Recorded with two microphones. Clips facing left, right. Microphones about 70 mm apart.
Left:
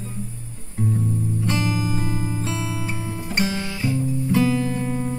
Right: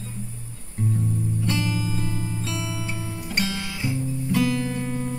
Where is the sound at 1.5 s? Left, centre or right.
Left.